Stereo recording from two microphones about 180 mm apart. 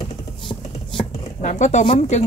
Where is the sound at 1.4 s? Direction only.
40° left (ahead or behind).